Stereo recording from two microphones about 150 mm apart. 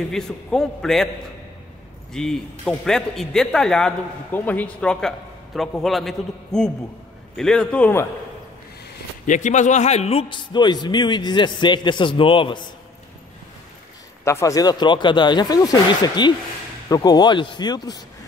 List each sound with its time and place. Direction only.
0.1 s a man's voice: 5° left (ahead or behind)
2.1 s a man's voice: 5° left (ahead or behind)
9.2 s a man's voice: 55° left (ahead or behind); by 12.6 s 35° left (ahead or behind)
14.2 s speech: 20° left (ahead or behind)